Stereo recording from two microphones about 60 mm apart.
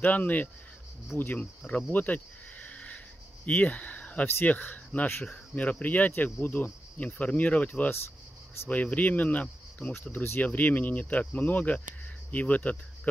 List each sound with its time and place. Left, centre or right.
0.0 s speech: left
1.9 s cricket: left
3.4 s speech: left